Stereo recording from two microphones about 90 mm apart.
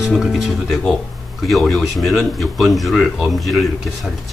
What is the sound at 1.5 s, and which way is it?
Speech, centre (ahead or behind).